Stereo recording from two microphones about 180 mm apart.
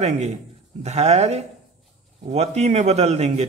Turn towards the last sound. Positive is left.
turn(degrees=-35)  # may be behind; listen again after turning